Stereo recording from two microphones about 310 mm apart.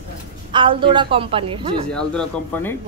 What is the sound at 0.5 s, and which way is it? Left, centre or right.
A woman's voice, centre.